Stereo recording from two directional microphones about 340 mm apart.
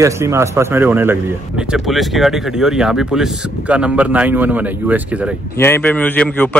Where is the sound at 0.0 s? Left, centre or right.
Centre.